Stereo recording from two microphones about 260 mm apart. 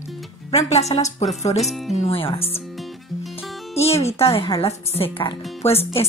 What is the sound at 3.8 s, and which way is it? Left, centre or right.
Speech, left.